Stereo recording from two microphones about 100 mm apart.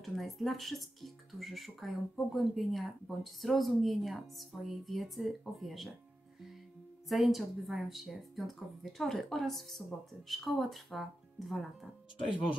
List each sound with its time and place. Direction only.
0.0 s speech: centre (ahead or behind)
7.1 s speech: centre (ahead or behind)